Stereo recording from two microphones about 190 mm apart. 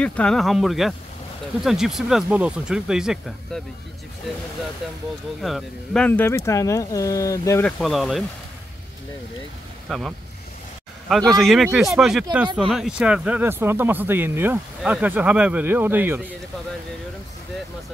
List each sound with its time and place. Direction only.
0.0 s speech: 5° left (ahead or behind)
5.4 s speech: centre (ahead or behind)
7.6 s speech: centre (ahead or behind)
9.8 s speech: centre (ahead or behind)
11.3 s speech: centre (ahead or behind)